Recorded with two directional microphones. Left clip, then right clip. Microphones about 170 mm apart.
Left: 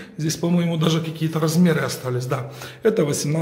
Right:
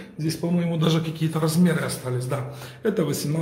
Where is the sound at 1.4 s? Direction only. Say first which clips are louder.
Left 4 dB; 30° left (ahead or behind).